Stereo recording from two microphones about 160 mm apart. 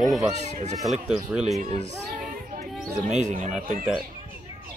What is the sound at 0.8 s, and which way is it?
Speech, 5° right (ahead or behind).